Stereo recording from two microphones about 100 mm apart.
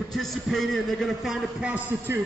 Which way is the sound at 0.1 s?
Centre (ahead or behind).